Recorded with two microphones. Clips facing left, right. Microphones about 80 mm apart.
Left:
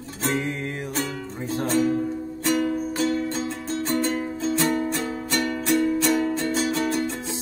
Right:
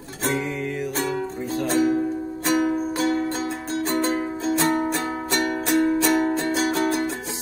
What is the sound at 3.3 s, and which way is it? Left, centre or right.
Music, right.